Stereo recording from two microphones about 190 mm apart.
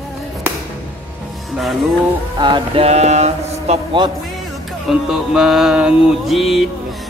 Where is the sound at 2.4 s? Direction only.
25° right (ahead or behind).